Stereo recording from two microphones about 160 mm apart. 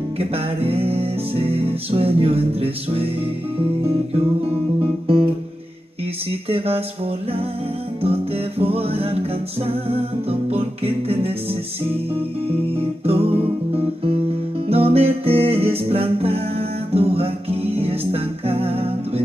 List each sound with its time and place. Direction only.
0.2 s music: 40° right (ahead or behind)
5.0 s music: 35° right (ahead or behind)
6.5 s music: 40° right (ahead or behind)
8.0 s music: 35° right (ahead or behind)
13.0 s music: 35° right (ahead or behind)